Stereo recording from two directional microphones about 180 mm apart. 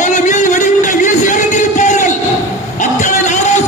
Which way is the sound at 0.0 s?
45° left (ahead or behind).